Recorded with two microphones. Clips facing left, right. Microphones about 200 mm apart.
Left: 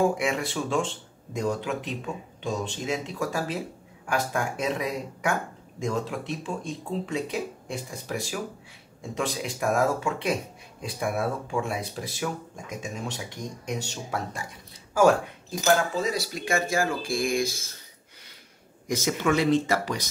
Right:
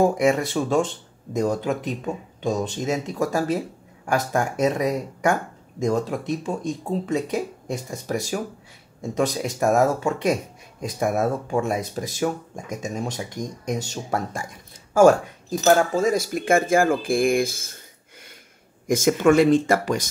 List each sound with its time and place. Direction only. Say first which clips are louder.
0.0 s speech: right 6 dB; 40° right (ahead or behind)
15.6 s speech: right 5 dB; 45° right (ahead or behind)
18.9 s speech: right 8 dB; 50° right (ahead or behind)